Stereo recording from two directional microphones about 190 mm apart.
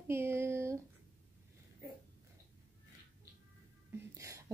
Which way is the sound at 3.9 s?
15° right (ahead or behind).